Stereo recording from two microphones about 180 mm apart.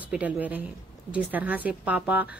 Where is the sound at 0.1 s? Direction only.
10° right (ahead or behind).